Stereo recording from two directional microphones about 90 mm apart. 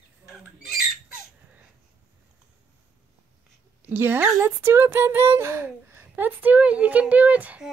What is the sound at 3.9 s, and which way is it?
Speech, 25° right (ahead or behind).